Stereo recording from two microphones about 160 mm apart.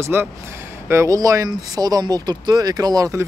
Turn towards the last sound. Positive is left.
turn(degrees=-20)  # may be behind; listen again after turning